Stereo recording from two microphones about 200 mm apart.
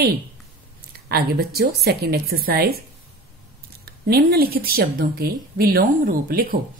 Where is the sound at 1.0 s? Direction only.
50° right (ahead or behind).